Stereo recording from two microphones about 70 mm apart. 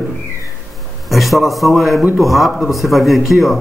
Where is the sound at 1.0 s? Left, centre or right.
Centre.